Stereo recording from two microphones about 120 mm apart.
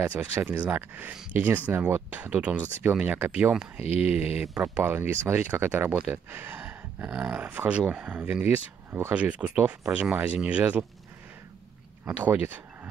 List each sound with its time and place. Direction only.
0.0 s speech: 15° right (ahead or behind)
3.8 s speech: 60° left (ahead or behind)
4.4 s speech: 10° right (ahead or behind)
12.0 s speech: 15° right (ahead or behind)